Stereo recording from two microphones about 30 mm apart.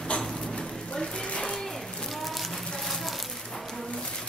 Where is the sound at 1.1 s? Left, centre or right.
Left.